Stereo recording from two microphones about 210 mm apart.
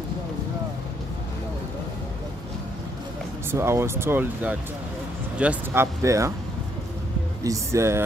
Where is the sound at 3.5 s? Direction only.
10° right (ahead or behind).